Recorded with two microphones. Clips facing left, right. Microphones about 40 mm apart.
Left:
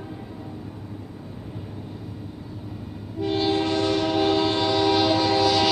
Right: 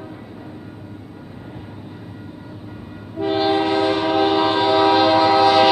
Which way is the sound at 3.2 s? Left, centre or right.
Right.